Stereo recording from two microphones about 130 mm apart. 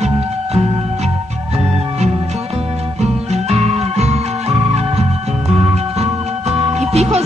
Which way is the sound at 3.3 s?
55° right (ahead or behind).